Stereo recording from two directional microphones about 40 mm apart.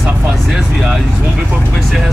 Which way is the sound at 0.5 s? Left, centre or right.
Centre.